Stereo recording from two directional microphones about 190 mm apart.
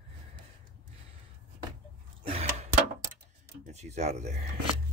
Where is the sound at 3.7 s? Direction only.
35° right (ahead or behind).